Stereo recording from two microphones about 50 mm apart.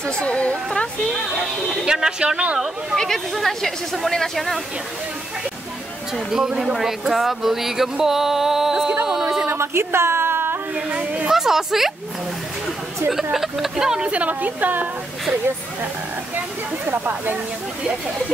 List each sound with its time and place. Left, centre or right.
0.0 s a woman's voice: left
1.7 s speech: centre
3.3 s speech: centre
6.1 s speech: centre
9.5 s a sound: right
10.9 s speech: right
11.2 s speech: centre
13.1 s speech: centre
14.1 s a woman's voice: right
16.8 s a woman's voice: right